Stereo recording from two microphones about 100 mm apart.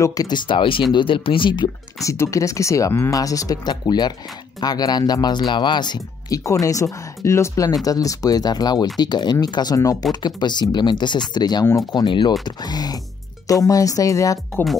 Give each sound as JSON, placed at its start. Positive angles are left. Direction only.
{"t": 0.0, "sound": "speech", "side_deg": 35}
{"t": 2.0, "sound": "speech", "side_deg": 30}
{"t": 6.2, "sound": "speech", "side_deg": 35}